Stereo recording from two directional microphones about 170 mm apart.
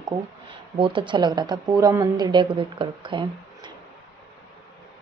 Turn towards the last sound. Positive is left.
turn(degrees=-30)  # may be behind; listen again after turning